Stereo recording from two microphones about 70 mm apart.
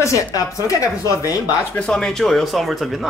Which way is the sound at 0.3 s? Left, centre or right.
Left.